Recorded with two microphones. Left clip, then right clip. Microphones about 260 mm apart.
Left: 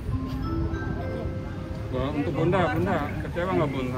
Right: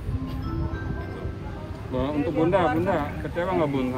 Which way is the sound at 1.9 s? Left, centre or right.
Right.